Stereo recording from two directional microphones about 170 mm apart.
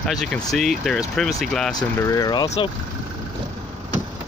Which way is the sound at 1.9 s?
20° left (ahead or behind).